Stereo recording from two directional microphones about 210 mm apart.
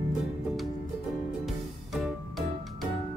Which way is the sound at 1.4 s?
Centre (ahead or behind).